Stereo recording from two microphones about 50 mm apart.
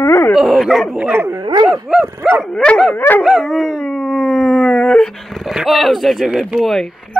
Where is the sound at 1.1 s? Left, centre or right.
Right.